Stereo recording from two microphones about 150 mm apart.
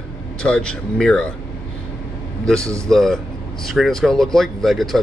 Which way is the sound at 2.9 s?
5° left (ahead or behind).